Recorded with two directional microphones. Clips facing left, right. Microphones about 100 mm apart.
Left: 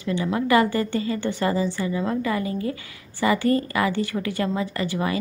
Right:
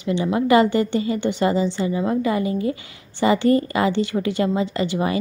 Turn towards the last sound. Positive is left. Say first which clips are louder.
# right 3 dB
turn(degrees=-20)  # may be behind; listen again after turning